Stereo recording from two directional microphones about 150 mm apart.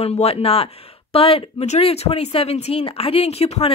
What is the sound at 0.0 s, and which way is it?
A woman's voice, 45° left (ahead or behind).